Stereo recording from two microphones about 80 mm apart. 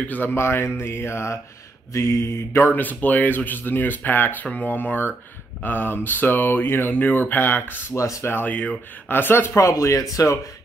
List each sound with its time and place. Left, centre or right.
0.0 s speech: left
7.9 s speech: left
9.6 s speech: left